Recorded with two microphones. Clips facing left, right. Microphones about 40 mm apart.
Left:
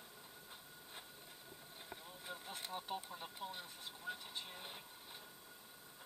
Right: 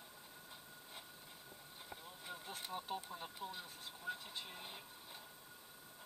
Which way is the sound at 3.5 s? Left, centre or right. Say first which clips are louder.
Even; left.